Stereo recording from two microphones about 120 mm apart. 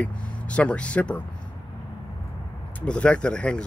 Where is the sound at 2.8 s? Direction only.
10° left (ahead or behind).